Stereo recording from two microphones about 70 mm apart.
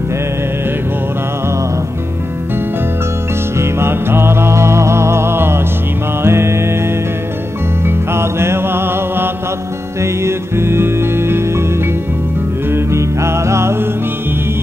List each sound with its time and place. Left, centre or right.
3.5 s music: right
7.8 s music: right
12.7 s music: right